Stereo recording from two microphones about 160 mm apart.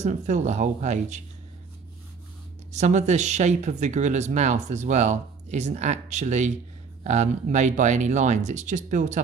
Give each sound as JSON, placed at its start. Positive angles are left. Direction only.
{"t": 0.0, "sound": "speech", "side_deg": -50}
{"t": 2.7, "sound": "speech", "side_deg": -45}